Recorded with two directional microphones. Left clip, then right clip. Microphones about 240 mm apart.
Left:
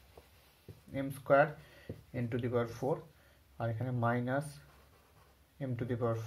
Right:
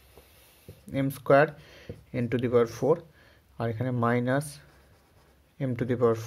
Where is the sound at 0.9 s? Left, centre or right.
Right.